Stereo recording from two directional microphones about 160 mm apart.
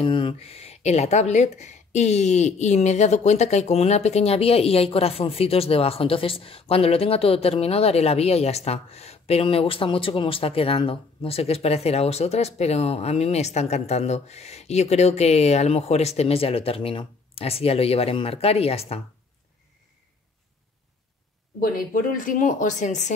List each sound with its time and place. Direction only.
0.0 s speech: 30° left (ahead or behind)
21.5 s a woman's voice: 65° left (ahead or behind); by 23.1 s 45° left (ahead or behind)